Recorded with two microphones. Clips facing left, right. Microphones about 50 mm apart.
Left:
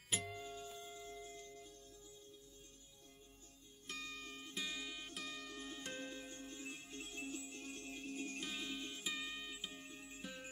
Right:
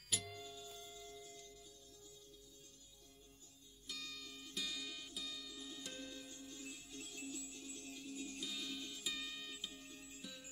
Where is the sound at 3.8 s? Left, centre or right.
Left.